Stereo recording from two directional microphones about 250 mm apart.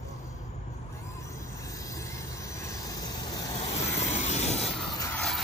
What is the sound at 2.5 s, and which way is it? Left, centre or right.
Vehicle, centre.